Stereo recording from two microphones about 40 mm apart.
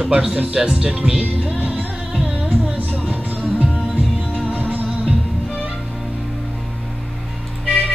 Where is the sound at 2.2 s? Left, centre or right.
Right.